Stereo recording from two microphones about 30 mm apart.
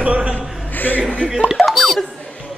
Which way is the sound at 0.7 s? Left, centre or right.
Left.